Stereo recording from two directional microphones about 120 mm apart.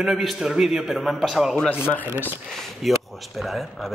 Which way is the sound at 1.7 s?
15° left (ahead or behind).